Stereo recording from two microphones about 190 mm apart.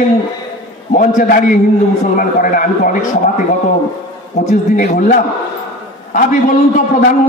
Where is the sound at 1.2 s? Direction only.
45° left (ahead or behind).